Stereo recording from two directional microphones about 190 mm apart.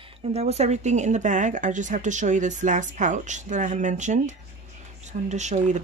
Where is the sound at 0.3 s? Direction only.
35° right (ahead or behind).